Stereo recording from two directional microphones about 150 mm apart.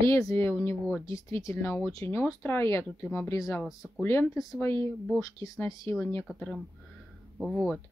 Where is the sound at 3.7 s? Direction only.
5° right (ahead or behind).